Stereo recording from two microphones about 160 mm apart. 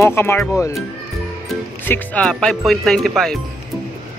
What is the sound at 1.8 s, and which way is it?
Speech, 10° left (ahead or behind).